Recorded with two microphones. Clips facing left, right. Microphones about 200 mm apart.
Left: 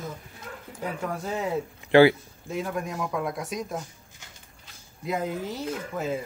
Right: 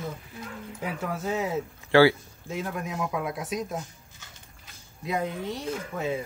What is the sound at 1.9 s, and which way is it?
Speech, 20° left (ahead or behind).